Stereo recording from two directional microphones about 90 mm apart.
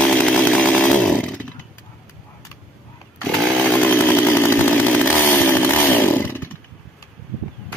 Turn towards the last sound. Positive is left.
turn(degrees=25)  # may be behind; listen again after turning